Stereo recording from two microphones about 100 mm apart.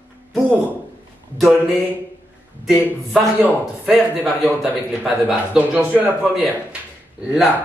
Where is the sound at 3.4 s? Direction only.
15° right (ahead or behind).